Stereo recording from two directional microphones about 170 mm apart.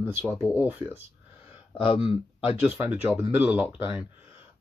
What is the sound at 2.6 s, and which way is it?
Speech, 10° right (ahead or behind).